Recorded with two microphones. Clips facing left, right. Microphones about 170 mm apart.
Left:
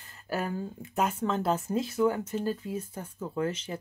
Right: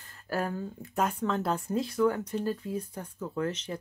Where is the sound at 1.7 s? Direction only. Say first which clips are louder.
Right 2 dB; 5° left (ahead or behind).